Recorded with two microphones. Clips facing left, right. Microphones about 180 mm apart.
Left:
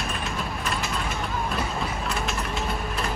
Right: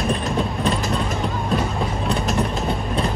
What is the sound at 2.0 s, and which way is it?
Vehicle, 35° right (ahead or behind).